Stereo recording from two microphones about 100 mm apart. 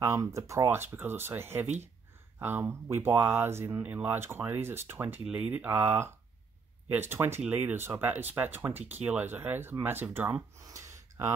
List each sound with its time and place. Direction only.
0.0 s speech: 30° right (ahead or behind)
10.6 s gasp: 30° right (ahead or behind)